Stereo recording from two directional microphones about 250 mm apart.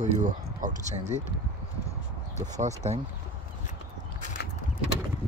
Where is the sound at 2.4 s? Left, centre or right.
Right.